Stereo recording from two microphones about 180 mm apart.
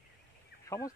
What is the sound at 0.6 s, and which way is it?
Fowl, 20° left (ahead or behind).